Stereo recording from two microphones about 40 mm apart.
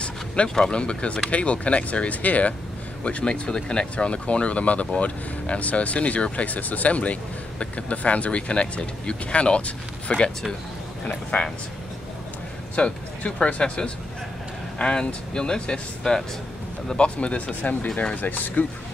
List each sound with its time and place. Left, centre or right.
0.7 s speech: left
12.7 s speech: left